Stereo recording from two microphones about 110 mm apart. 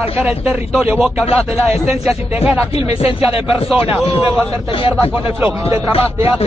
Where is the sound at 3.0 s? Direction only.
60° left (ahead or behind).